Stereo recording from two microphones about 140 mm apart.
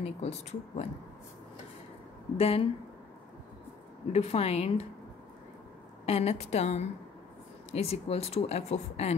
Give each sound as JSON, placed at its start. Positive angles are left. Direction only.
{"t": 0.0, "sound": "speech", "side_deg": 50}
{"t": 2.3, "sound": "speech", "side_deg": 45}
{"t": 4.1, "sound": "speech", "side_deg": 45}
{"t": 6.0, "sound": "speech", "side_deg": 50}